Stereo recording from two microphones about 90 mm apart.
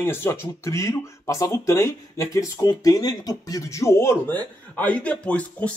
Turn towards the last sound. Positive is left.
turn(degrees=15)  # may be behind; listen again after turning